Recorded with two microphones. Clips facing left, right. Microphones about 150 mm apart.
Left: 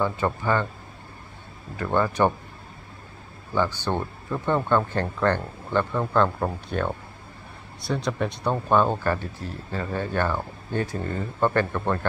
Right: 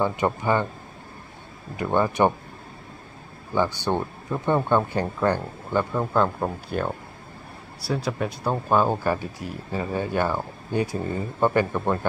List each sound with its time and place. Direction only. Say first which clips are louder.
0.0 s speech: right 2 dB; 15° right (ahead or behind)
1.8 s speech: right 1 dB; 15° right (ahead or behind)
3.5 s speech: right 1 dB; 15° right (ahead or behind)